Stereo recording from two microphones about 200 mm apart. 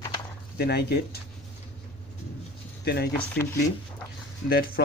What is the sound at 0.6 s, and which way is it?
Speech, 55° left (ahead or behind).